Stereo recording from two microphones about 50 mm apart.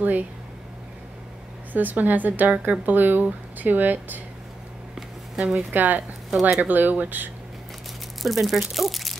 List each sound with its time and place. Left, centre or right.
0.0 s speech: right
1.7 s a woman's voice: right
5.3 s speech: centre
5.6 s a woman's voice: right
8.2 s speech: centre